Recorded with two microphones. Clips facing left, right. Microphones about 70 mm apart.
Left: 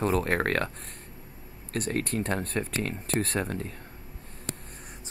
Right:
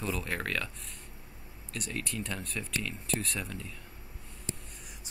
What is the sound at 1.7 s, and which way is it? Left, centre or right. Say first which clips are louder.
Speech: left 8 dB; left.